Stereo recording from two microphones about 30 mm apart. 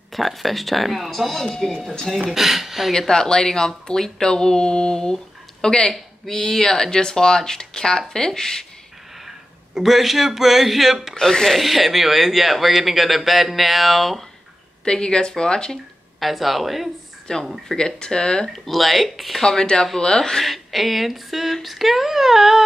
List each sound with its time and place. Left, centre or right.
0.1 s speech: centre
2.3 s speech: centre
2.9 s speech: left
9.8 s speech: centre
11.1 s speech: centre
11.5 s speech: centre
14.9 s speech: left
16.2 s speech: centre
17.3 s speech: left
18.5 s speech: centre
19.6 s speech: left
20.2 s speech: centre
20.4 s speech: centre